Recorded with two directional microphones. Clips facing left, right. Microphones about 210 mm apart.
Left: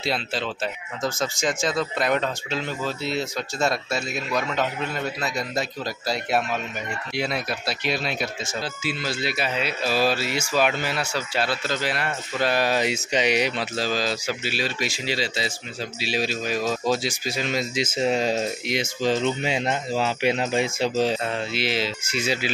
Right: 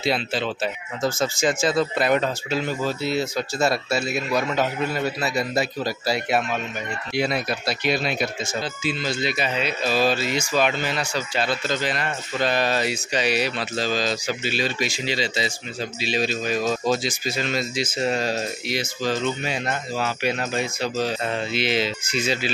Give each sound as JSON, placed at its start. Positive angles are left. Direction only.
{"t": 0.0, "sound": "speech", "side_deg": 0}
{"t": 21.5, "sound": "speech", "side_deg": 0}